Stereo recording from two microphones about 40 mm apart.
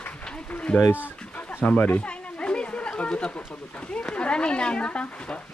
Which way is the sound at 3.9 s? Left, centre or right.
Left.